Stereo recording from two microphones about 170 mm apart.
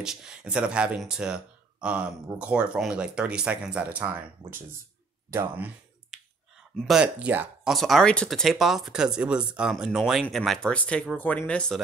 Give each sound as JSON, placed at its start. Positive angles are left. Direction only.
{"t": 0.0, "sound": "speech", "side_deg": -5}
{"t": 5.3, "sound": "speech", "side_deg": -15}
{"t": 6.1, "sound": "finger snapping", "side_deg": -5}
{"t": 6.8, "sound": "speech", "side_deg": -5}